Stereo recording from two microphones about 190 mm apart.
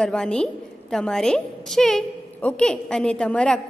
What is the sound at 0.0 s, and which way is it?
A woman's voice, 5° left (ahead or behind).